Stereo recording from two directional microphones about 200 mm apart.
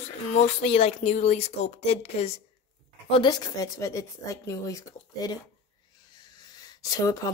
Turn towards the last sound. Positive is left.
turn(degrees=15)  # may be behind; listen again after turning